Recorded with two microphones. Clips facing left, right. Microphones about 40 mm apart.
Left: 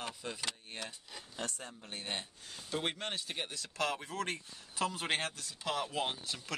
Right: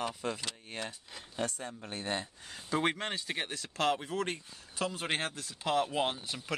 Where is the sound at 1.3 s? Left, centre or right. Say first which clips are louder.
Right 6 dB; right.